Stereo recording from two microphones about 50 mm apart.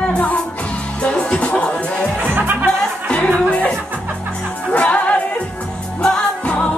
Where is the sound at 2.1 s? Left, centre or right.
Right.